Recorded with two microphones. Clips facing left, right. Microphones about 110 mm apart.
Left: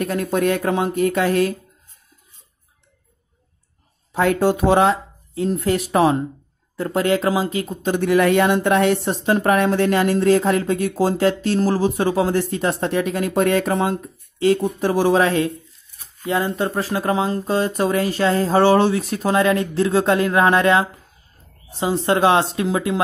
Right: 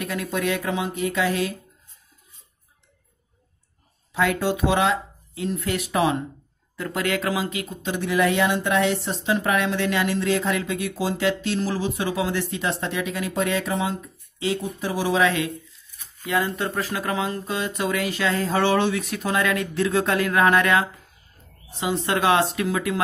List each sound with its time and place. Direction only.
0.0 s speech: 45° left (ahead or behind)
4.1 s speech: 45° left (ahead or behind)
16.3 s speech: 30° left (ahead or behind)